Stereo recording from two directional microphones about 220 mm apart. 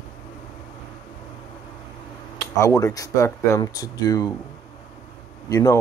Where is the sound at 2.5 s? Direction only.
15° left (ahead or behind).